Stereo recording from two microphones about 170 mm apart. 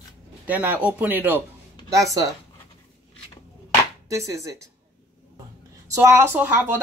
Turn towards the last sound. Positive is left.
turn(degrees=-10)  # may be behind; listen again after turning